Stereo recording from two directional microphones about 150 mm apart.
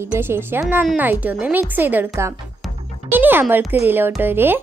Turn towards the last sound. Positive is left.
turn(degrees=-15)  # may be behind; listen again after turning